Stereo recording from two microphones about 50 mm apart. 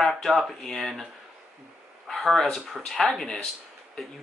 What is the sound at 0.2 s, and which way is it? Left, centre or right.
Speech, centre.